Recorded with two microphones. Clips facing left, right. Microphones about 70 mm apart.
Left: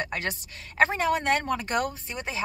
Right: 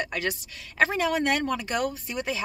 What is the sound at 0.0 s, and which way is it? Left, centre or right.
Speech, left.